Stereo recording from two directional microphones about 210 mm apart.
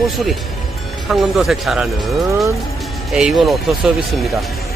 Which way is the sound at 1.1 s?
Centre (ahead or behind).